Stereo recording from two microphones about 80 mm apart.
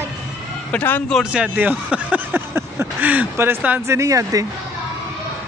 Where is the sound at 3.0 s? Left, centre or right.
Centre.